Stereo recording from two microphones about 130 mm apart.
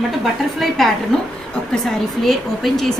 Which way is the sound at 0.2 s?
Centre (ahead or behind).